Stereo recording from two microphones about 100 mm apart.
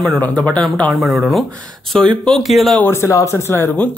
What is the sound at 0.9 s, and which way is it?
Speech, centre (ahead or behind).